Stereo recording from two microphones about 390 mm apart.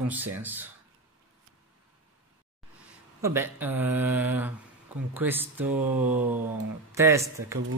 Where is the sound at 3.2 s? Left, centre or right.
Centre.